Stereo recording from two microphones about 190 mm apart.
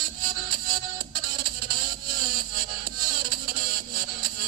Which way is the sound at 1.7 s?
45° right (ahead or behind).